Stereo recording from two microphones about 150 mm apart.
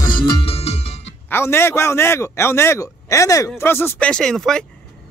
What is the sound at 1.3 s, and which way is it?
A man's voice, 15° left (ahead or behind).